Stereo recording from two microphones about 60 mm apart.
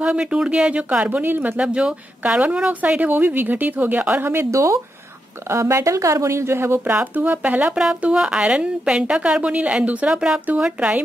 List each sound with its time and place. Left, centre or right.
0.0 s speech: centre; by 1.6 s right
1.6 s a woman's voice: centre
2.7 s speech: right
4.2 s speech: right
7.7 s a woman's voice: centre